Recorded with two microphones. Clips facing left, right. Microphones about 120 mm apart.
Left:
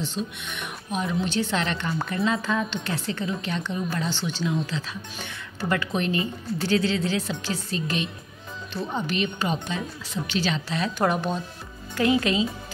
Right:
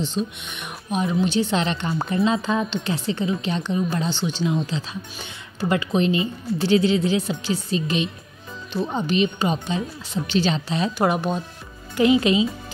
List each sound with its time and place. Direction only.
0.0 s speech: 20° right (ahead or behind)
11.0 s speech: 10° right (ahead or behind)